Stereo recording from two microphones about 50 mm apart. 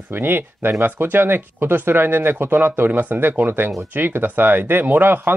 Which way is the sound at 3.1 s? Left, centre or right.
Right.